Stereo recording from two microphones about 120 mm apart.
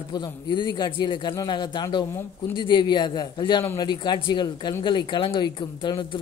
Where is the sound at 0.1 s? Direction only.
40° left (ahead or behind).